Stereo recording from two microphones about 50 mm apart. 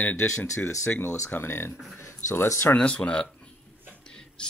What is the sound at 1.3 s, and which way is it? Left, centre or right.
Speech, left.